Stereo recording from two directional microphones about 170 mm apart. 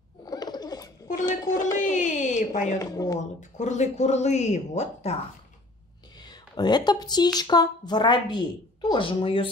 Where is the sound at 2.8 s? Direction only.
20° left (ahead or behind).